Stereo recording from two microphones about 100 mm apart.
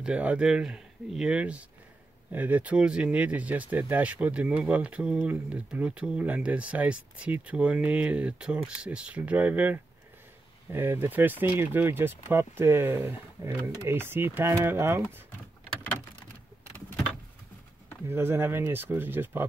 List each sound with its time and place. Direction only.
0.0 s speech: 15° right (ahead or behind)
18.0 s speech: 25° right (ahead or behind)